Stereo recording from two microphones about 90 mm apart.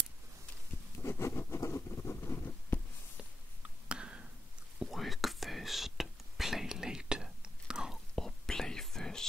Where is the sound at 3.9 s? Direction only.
10° right (ahead or behind).